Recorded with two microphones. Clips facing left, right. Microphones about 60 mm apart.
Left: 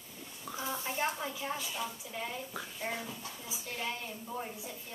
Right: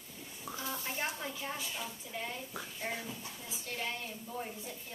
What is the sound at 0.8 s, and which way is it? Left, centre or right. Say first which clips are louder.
A woman's voice: left 5 dB; centre.